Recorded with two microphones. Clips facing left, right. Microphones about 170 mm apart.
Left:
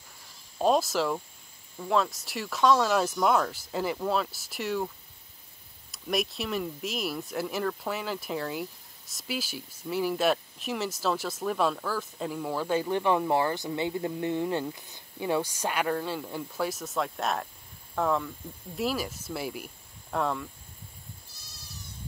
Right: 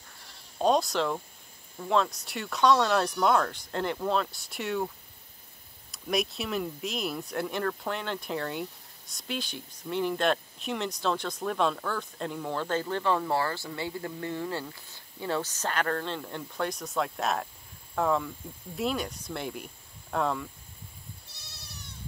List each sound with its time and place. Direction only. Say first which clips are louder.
0.6 s speech: even; 5° left (ahead or behind)
5.9 s speech: even; centre (ahead or behind)
21.3 s sheep: even; 70° right (ahead or behind)